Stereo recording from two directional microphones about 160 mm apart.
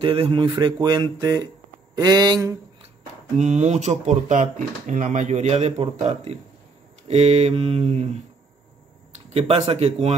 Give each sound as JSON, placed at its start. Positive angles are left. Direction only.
{"t": 0.0, "sound": "speech", "side_deg": -30}
{"t": 3.3, "sound": "speech", "side_deg": -45}
{"t": 7.1, "sound": "mantra", "side_deg": -40}
{"t": 9.3, "sound": "mantra", "side_deg": -40}